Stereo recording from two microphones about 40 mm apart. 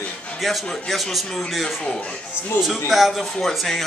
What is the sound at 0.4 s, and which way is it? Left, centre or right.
A man's voice, centre.